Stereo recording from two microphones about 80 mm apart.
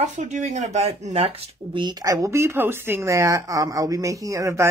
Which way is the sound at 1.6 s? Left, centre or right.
Right.